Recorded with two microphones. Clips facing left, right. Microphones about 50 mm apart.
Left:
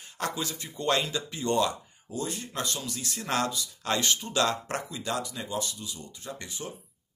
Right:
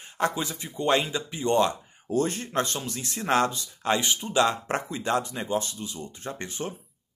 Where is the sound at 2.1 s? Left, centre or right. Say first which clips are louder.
Right 8 dB; right.